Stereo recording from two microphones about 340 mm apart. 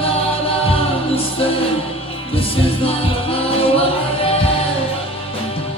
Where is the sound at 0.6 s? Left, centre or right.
Centre.